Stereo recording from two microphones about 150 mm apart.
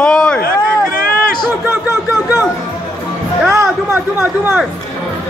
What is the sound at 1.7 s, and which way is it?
Speech, 15° right (ahead or behind).